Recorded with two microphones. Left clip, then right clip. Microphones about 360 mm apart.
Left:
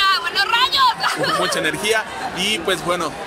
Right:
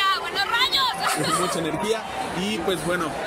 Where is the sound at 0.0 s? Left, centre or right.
Centre.